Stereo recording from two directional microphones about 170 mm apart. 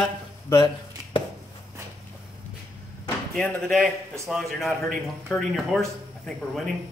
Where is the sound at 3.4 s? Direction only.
5° left (ahead or behind).